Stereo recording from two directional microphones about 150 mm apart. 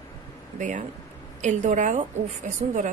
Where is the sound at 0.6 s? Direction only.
55° right (ahead or behind).